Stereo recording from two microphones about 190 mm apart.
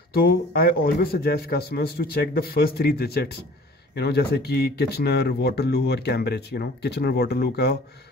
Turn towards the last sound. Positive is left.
turn(degrees=60)  # may be behind; listen again after turning